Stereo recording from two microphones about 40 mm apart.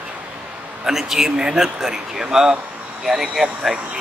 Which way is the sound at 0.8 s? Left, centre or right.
Centre.